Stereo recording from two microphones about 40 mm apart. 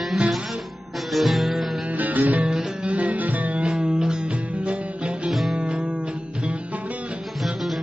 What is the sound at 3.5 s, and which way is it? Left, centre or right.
Music, right.